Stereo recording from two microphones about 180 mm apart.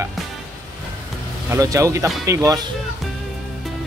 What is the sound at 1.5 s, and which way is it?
Speech, 20° right (ahead or behind).